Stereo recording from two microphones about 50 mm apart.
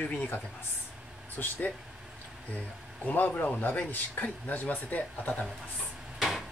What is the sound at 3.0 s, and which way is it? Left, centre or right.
Speech, left.